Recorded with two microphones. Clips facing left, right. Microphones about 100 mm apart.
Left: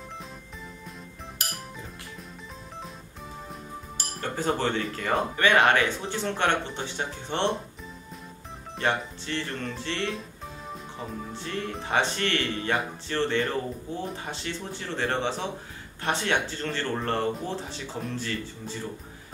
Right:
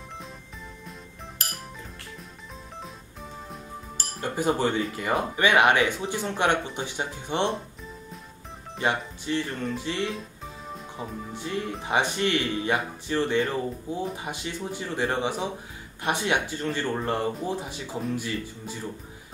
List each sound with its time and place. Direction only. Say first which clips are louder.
4.2 s speech: right 2 dB; 10° right (ahead or behind)
8.7 s speech: even; 10° right (ahead or behind)
9.5 s music: right 2 dB; centre (ahead or behind)
10.7 s speech: right 1 dB; 10° right (ahead or behind)